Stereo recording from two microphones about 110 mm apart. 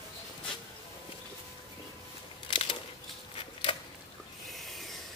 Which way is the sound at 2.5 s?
55° left (ahead or behind).